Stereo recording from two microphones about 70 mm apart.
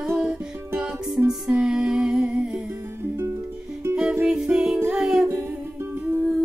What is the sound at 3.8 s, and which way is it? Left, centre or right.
Music, right.